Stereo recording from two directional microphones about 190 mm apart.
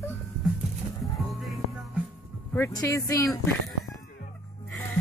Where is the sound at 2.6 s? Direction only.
15° left (ahead or behind).